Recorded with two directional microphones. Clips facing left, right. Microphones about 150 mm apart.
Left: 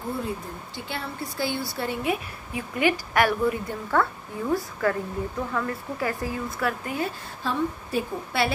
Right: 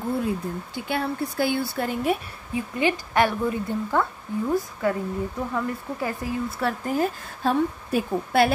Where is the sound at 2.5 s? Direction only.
25° right (ahead or behind).